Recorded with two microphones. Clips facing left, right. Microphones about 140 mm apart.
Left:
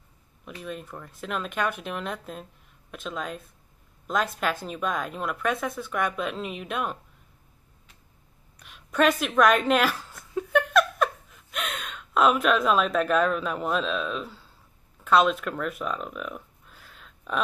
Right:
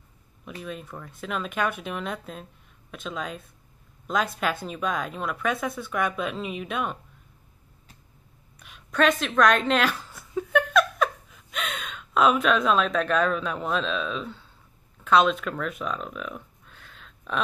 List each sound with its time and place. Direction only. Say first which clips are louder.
0.6 s speech: even; centre (ahead or behind)
8.5 s a sound: even; centre (ahead or behind)
15.0 s speech: right 1 dB; centre (ahead or behind)